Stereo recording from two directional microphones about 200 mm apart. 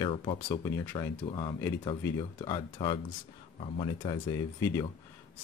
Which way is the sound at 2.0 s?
20° left (ahead or behind).